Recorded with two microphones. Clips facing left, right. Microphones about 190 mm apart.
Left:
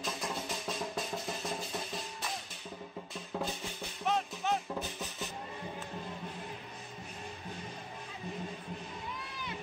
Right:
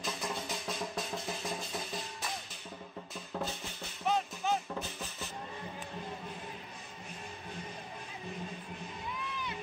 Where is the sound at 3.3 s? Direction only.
5° left (ahead or behind).